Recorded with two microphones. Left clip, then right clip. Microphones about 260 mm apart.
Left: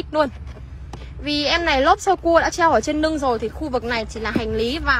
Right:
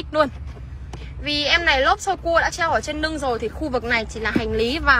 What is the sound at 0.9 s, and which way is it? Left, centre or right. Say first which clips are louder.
A woman's voice: even; left.